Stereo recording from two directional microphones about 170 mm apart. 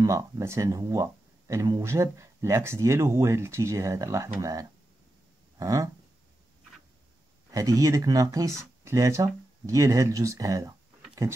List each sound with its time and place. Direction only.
0.0 s speech: 20° right (ahead or behind)
7.5 s speech: 20° right (ahead or behind)